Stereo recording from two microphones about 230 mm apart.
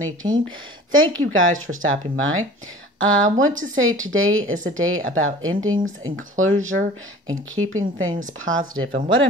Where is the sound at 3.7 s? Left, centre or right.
Right.